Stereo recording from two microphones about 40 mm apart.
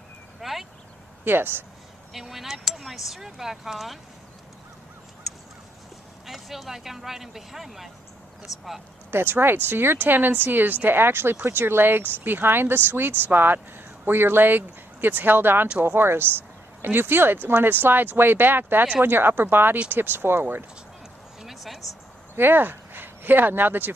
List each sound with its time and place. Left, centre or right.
0.4 s a sound: centre
1.2 s speech: right
2.1 s speech: centre
6.2 s speech: centre
9.1 s speech: right
15.8 s speech: right
21.4 s a sound: centre
22.3 s speech: right